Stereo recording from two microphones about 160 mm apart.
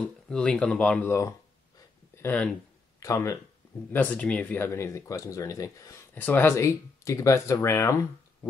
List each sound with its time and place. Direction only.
0.0 s speech: 5° left (ahead or behind)
1.8 s a sound: 15° left (ahead or behind)
3.0 s speech: 20° left (ahead or behind)